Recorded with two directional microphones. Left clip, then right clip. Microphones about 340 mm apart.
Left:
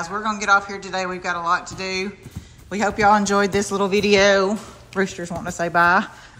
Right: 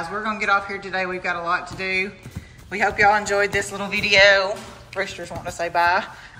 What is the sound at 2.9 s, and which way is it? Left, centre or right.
Speech, left.